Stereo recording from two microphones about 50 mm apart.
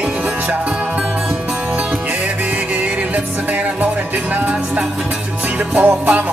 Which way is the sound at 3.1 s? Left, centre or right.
Right.